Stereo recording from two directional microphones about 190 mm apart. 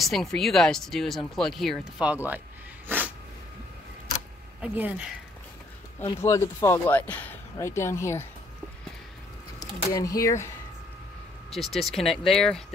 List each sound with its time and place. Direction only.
0.0 s speech: centre (ahead or behind)
2.9 s a sound: 10° right (ahead or behind)
4.6 s speech: 5° right (ahead or behind)
6.0 s speech: 15° left (ahead or behind)
9.6 s speech: 20° left (ahead or behind)
11.5 s speech: centre (ahead or behind)